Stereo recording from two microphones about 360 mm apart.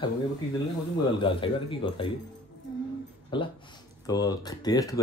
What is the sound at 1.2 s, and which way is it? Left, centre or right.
Speech, centre.